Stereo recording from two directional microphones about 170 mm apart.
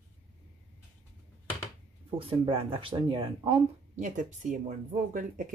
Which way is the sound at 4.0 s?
45° right (ahead or behind).